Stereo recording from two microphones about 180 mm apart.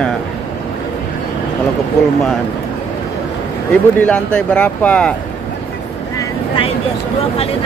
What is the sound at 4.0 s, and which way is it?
Speech, 5° left (ahead or behind).